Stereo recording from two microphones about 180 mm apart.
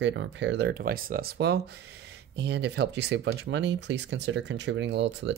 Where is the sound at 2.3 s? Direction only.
75° right (ahead or behind).